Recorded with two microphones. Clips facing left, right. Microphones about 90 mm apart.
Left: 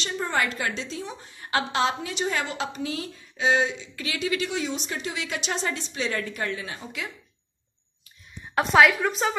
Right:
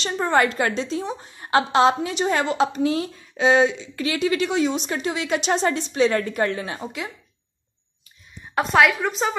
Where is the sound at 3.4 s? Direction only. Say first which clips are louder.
Right 6 dB; 65° right (ahead or behind).